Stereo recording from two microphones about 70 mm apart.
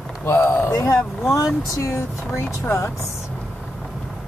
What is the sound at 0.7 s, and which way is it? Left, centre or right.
Speech, left.